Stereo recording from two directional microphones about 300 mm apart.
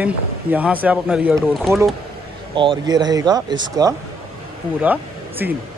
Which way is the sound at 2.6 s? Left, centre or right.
Centre.